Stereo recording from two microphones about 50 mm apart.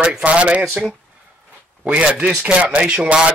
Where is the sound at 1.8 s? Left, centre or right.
Right.